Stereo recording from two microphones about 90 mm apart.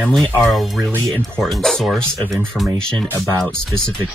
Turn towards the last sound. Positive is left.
turn(degrees=5)  # may be behind; listen again after turning